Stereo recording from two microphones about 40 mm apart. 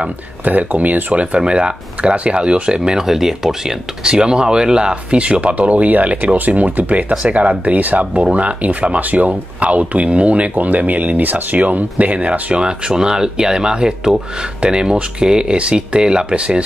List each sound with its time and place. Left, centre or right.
0.5 s speech: right; by 3.7 s centre
4.0 s speech: right